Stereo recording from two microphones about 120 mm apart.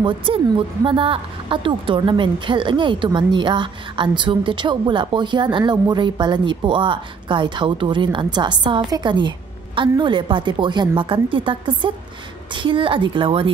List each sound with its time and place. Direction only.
0.0 s a woman's voice: 45° right (ahead or behind)